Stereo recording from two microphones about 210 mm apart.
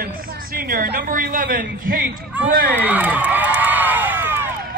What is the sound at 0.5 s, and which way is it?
A woman's voice, 45° right (ahead or behind).